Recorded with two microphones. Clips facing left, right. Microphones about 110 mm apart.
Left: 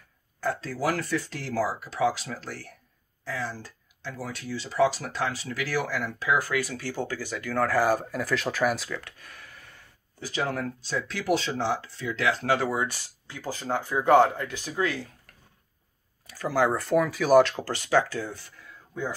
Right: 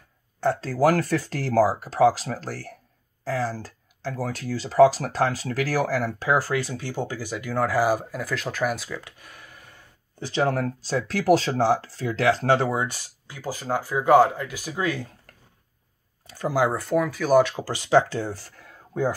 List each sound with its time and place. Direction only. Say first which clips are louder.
0.4 s speech: right 7 dB; 35° right (ahead or behind); by 9.0 s centre (ahead or behind)
9.0 s a sound: right 1 dB; 15° right (ahead or behind)
10.4 s speech: right 6 dB; 35° right (ahead or behind); by 15.0 s 20° right (ahead or behind)
16.3 s speech: right 4 dB; 25° right (ahead or behind)
16.5 s speech: right 1 dB; 10° right (ahead or behind)
16.8 s speech: even; centre (ahead or behind); by 19.1 s 45° right (ahead or behind)